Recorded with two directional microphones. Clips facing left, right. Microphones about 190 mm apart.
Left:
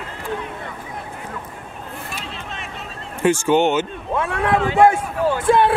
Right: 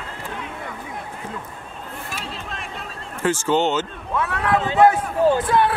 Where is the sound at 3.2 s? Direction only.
15° left (ahead or behind).